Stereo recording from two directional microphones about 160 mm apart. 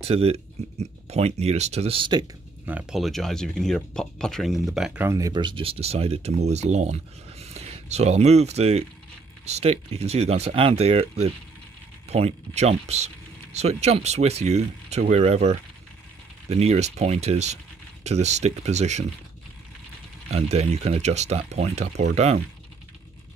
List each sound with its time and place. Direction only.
0.0 s speech: 40° right (ahead or behind)
2.6 s speech: 10° right (ahead or behind)
5.0 s speech: 20° right (ahead or behind); by 19.0 s 45° right (ahead or behind)
20.2 s speech: 40° right (ahead or behind)